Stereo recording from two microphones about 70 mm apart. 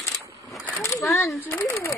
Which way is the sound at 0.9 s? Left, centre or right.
Left.